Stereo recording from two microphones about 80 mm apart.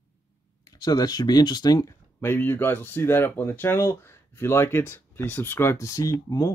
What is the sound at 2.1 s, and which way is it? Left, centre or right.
Speech, left.